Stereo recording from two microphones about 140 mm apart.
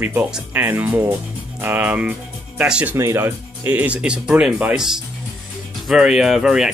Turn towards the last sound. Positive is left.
turn(degrees=-5)  # may be behind; listen again after turning